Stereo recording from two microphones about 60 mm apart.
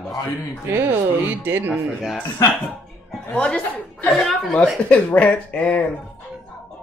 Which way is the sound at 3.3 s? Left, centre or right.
Centre.